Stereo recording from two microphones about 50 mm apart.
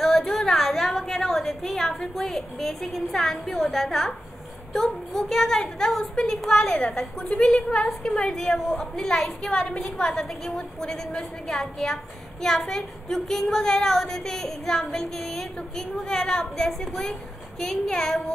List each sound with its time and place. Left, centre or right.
0.0 s a sound: centre
2.0 s a woman's voice: centre
8.3 s a woman's voice: centre